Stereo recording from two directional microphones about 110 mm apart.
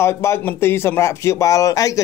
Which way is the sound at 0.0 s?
25° left (ahead or behind).